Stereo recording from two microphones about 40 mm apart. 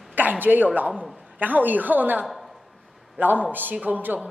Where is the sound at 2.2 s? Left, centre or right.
Centre.